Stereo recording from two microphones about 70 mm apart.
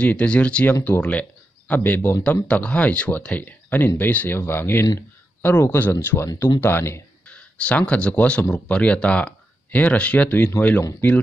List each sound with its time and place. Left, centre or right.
0.0 s speech: centre
2.4 s speech: centre
6.2 s speech: left
6.6 s speech: left
7.2 s speech: centre